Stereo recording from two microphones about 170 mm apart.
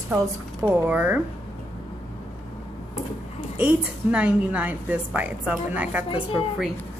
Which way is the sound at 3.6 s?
10° right (ahead or behind).